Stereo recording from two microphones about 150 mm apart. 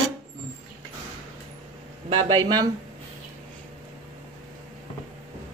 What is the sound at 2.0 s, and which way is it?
Speech, 30° right (ahead or behind).